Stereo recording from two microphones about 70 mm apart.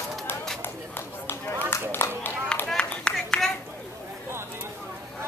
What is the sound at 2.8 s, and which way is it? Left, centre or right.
Clapping, centre.